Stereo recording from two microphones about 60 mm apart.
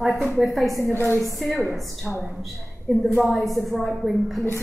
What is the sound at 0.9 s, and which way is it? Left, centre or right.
Speech, left.